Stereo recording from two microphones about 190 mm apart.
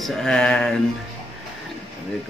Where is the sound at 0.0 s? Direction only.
5° left (ahead or behind).